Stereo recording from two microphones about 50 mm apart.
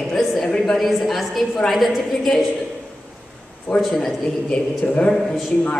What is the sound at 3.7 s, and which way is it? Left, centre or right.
Speech, left.